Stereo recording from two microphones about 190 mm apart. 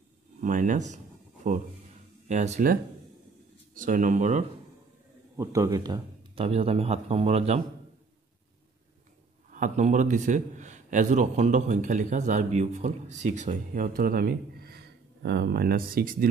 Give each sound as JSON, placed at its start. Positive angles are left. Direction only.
{"t": 0.4, "sound": "a man's voice", "side_deg": -45}
{"t": 5.3, "sound": "a man's voice", "side_deg": -15}
{"t": 9.5, "sound": "a man's voice", "side_deg": -40}